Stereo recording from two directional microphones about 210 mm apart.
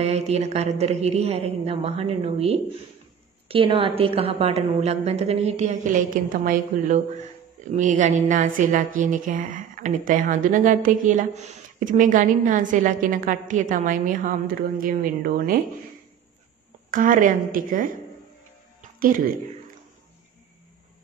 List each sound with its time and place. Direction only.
0.0 s a woman's voice: 30° right (ahead or behind)
16.9 s a woman's voice: 40° right (ahead or behind)
18.8 s music: 40° right (ahead or behind)